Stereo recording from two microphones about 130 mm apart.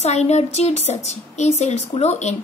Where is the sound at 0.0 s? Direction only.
55° left (ahead or behind).